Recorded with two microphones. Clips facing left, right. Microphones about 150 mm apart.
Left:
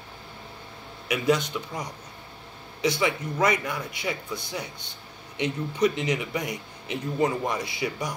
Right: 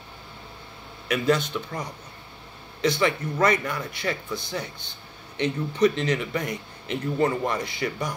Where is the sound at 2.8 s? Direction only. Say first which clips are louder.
Right 2 dB; 10° left (ahead or behind).